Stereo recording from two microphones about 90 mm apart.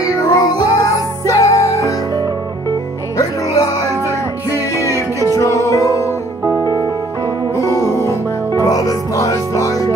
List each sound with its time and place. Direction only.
0.3 s music: 45° left (ahead or behind)
4.8 s music: 35° right (ahead or behind)
5.3 s music: 35° left (ahead or behind)
7.5 s music: 35° left (ahead or behind)